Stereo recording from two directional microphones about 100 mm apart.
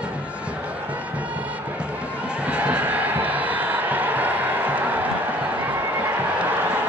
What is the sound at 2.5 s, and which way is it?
Crowd, 10° right (ahead or behind).